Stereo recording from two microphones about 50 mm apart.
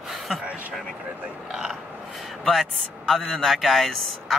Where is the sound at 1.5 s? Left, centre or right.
Centre.